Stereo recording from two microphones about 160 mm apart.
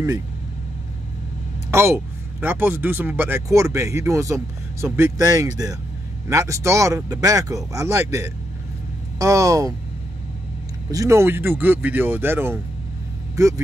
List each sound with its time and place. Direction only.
1.7 s speech: 15° right (ahead or behind)
10.9 s speech: 20° right (ahead or behind)